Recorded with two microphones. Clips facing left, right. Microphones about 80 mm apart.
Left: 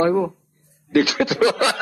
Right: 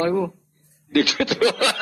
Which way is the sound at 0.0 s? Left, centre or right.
Centre.